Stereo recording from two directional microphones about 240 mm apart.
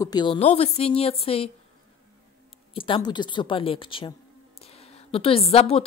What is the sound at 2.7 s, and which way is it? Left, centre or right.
Speech, centre.